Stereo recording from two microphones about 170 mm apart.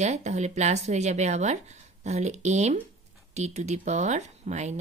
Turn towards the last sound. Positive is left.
turn(degrees=-40)  # may be behind; listen again after turning